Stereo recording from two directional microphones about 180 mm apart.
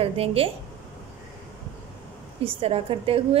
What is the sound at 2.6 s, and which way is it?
Speech, 30° right (ahead or behind).